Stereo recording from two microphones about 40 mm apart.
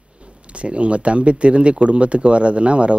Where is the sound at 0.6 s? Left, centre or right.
Right.